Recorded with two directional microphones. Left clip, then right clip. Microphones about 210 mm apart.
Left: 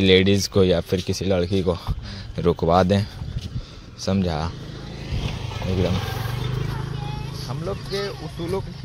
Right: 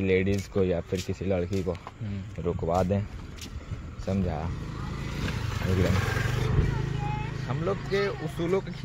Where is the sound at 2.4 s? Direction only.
40° left (ahead or behind).